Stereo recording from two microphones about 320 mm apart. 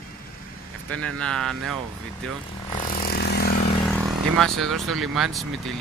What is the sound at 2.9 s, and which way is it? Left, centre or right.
Vehicle, left.